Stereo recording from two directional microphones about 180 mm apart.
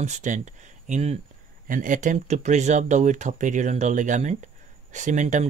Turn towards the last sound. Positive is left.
turn(degrees=-45)  # may be behind; listen again after turning